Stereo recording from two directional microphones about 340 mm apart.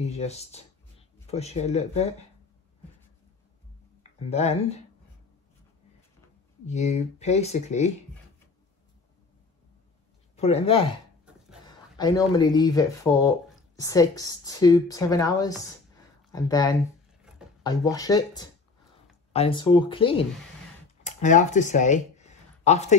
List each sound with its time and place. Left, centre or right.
0.0 s speech: centre
4.3 s a woman's voice: centre
6.6 s speech: centre
10.3 s a woman's voice: centre
17.2 s a sound: centre
17.6 s a woman's voice: centre
21.0 s a sound: left